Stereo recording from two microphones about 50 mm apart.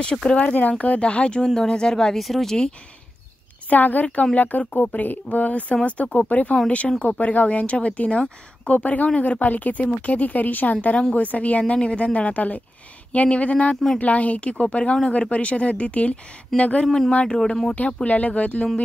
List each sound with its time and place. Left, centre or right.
0.0 s speech: centre
0.4 s speech: left
1.4 s speech: centre
2.1 s speech: centre
3.6 s speech: left
16.8 s speech: centre
17.1 s speech: left
18.0 s speech: left